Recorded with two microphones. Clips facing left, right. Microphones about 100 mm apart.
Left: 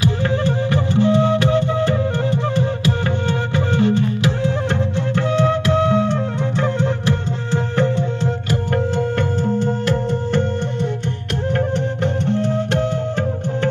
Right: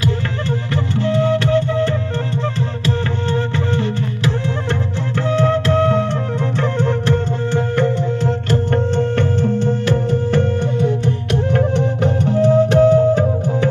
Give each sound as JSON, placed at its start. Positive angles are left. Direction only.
{"t": 0.7, "sound": "music", "side_deg": 20}
{"t": 5.4, "sound": "music", "side_deg": 15}
{"t": 11.5, "sound": "music", "side_deg": -5}